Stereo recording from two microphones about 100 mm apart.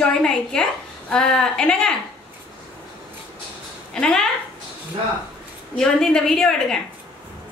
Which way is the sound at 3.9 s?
5° left (ahead or behind).